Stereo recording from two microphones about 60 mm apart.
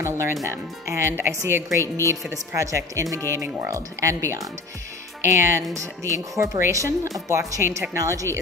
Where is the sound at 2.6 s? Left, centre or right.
Right.